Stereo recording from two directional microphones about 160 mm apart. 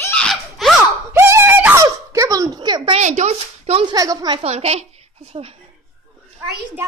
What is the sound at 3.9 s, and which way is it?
Speech, 25° right (ahead or behind).